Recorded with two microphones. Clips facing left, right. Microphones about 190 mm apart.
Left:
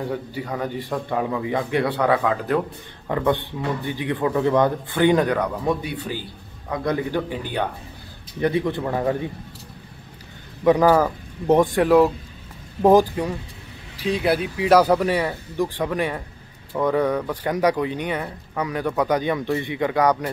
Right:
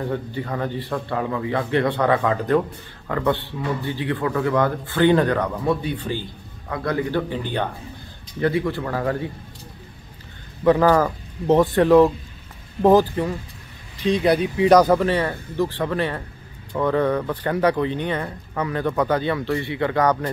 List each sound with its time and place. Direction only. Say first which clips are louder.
0.0 s speech: right 1 dB; 10° left (ahead or behind)
3.1 s speech: left 1 dB; 15° left (ahead or behind)
10.6 s speech: even; 15° left (ahead or behind)